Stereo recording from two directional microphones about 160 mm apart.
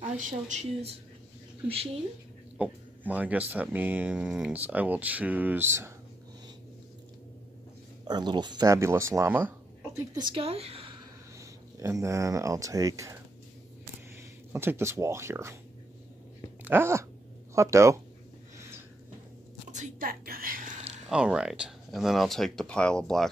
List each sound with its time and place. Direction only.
0.3 s speech: 50° right (ahead or behind)
1.7 s a woman's voice: 40° right (ahead or behind)
2.5 s speech: 10° right (ahead or behind)
8.0 s speech: 25° right (ahead or behind)
9.9 s a woman's voice: 25° right (ahead or behind)
11.3 s speech: 20° right (ahead or behind)
14.5 s speech: 15° right (ahead or behind)
16.6 s speech: 15° right (ahead or behind)
19.7 s whispering: 55° right (ahead or behind)
21.1 s speech: 5° right (ahead or behind)